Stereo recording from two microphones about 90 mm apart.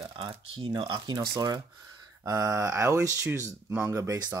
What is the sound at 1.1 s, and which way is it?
Speech, 50° right (ahead or behind).